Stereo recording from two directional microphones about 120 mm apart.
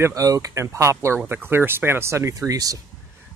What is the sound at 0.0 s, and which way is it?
Speech, 30° right (ahead or behind).